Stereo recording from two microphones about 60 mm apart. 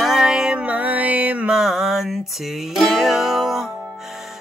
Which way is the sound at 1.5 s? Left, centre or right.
Centre.